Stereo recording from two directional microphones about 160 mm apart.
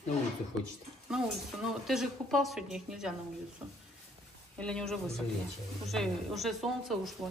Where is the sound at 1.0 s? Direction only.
5° right (ahead or behind).